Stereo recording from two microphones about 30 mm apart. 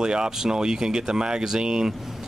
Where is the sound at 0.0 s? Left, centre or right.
Right.